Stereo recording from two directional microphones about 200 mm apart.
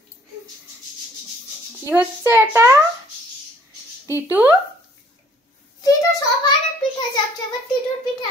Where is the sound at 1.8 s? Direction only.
10° right (ahead or behind).